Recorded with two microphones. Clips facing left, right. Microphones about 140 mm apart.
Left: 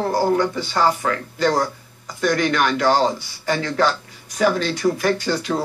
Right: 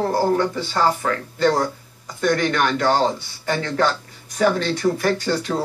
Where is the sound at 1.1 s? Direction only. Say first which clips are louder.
Right 1 dB; 30° right (ahead or behind).